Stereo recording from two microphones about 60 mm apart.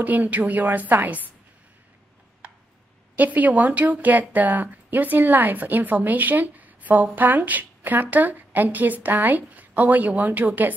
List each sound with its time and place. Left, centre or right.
0.0 s speech: right
3.2 s speech: right